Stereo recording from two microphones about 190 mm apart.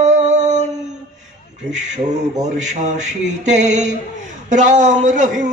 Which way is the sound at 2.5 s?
40° right (ahead or behind).